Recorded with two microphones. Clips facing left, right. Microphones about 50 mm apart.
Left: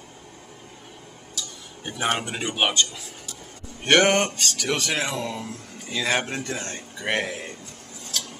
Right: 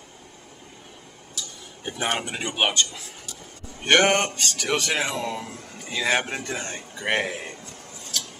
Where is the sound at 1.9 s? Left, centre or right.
Centre.